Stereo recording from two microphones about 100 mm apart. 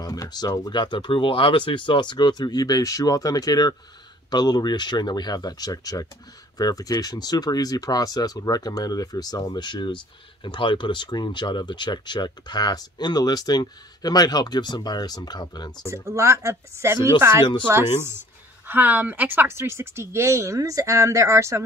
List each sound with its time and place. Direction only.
0.0 s speech: 35° left (ahead or behind)
15.9 s speech: 30° right (ahead or behind)